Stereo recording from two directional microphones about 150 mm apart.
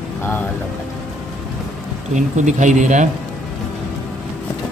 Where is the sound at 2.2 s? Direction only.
55° right (ahead or behind).